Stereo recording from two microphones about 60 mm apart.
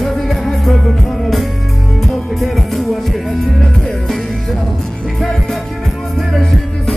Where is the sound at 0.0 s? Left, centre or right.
Centre.